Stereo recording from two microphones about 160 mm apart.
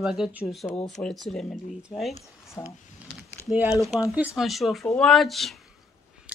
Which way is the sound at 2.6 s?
20° left (ahead or behind).